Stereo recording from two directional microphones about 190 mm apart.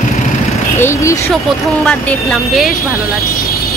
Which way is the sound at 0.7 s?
15° left (ahead or behind).